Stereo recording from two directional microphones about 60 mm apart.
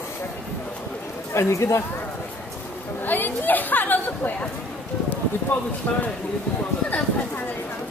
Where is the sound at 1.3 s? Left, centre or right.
Left.